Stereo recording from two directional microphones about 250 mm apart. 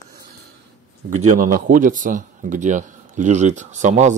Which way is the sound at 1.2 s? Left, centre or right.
Right.